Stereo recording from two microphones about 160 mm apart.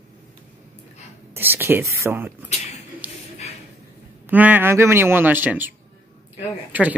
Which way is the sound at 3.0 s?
10° right (ahead or behind).